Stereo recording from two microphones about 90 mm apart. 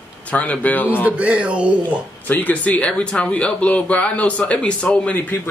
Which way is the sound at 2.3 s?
20° left (ahead or behind).